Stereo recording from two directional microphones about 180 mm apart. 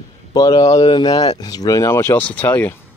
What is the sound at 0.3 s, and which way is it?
Speech, 20° left (ahead or behind).